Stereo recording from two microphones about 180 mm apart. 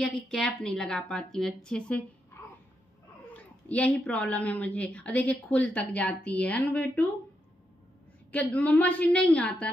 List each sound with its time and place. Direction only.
0.0 s a woman's voice: 5° left (ahead or behind)
3.6 s a woman's voice: 5° left (ahead or behind)
8.3 s a woman's voice: 5° left (ahead or behind)